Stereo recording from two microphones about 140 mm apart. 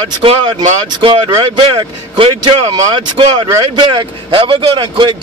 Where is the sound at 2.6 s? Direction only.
30° right (ahead or behind).